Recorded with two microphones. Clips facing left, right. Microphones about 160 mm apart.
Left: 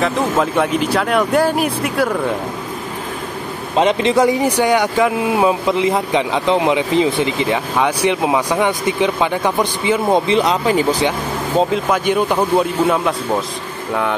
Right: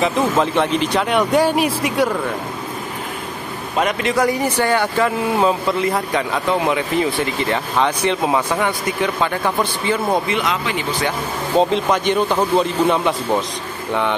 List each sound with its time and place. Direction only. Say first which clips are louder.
0.0 s speech: even; 5° left (ahead or behind)
3.7 s speech: left 5 dB; 25° left (ahead or behind)
11.5 s speech: even; 5° left (ahead or behind)